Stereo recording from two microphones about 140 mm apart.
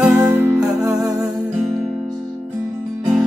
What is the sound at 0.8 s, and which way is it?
Music, 25° right (ahead or behind).